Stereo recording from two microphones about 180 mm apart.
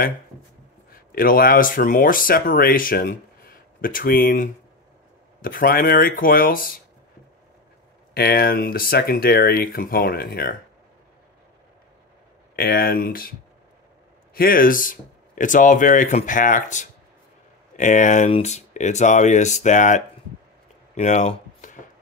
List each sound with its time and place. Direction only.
1.1 s speech: 55° left (ahead or behind)
8.1 s speech: 60° left (ahead or behind)
12.5 s speech: 55° left (ahead or behind)
14.3 s speech: 55° left (ahead or behind)
20.9 s a sound: 40° left (ahead or behind)